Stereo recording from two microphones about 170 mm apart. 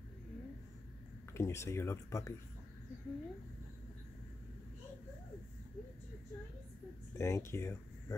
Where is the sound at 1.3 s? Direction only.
15° left (ahead or behind).